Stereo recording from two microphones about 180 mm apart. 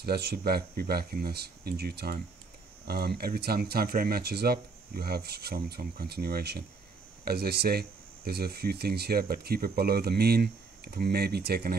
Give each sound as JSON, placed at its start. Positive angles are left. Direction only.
{"t": 0.0, "sound": "speech", "side_deg": -60}